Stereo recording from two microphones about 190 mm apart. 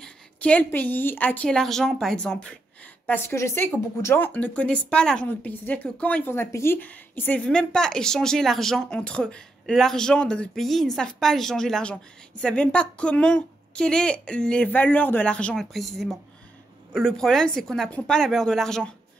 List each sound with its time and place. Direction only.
0.0 s a woman's voice: 5° left (ahead or behind)